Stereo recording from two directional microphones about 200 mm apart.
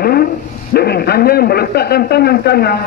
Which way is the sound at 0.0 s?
50° left (ahead or behind).